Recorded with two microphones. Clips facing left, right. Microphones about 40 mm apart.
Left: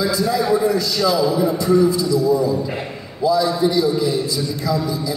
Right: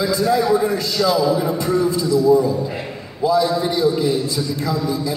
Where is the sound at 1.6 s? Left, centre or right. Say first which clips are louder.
Left 3 dB; right.